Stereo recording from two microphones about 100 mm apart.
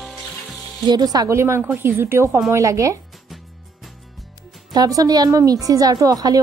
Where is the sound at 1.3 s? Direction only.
25° right (ahead or behind).